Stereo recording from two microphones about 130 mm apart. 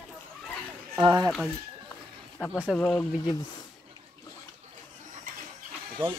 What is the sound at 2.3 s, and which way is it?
Speech, 15° left (ahead or behind).